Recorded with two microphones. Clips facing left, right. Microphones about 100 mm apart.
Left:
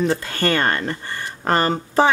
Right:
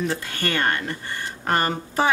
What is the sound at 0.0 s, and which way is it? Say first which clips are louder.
Speech: left 6 dB; 40° left (ahead or behind).